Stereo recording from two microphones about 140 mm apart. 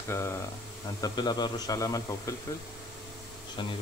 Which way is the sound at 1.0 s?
30° left (ahead or behind).